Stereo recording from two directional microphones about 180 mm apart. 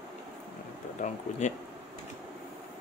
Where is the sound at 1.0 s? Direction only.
40° left (ahead or behind).